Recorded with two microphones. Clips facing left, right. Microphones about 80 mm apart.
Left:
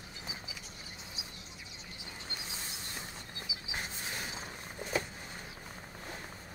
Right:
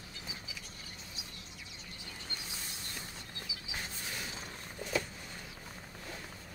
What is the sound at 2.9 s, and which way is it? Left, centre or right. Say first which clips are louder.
Mechanisms: left 1 dB; left.